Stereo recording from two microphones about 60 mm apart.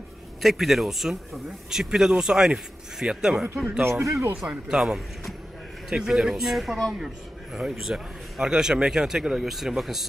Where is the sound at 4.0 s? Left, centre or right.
Right.